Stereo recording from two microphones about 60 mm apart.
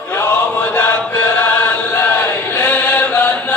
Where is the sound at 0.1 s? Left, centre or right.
Left.